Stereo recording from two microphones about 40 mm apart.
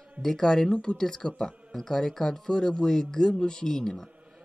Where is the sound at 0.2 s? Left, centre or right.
Centre.